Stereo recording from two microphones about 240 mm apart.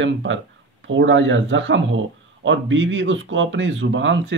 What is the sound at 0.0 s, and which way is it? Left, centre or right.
Speech, right.